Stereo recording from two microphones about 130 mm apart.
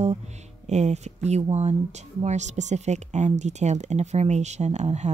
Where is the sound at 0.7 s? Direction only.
60° right (ahead or behind).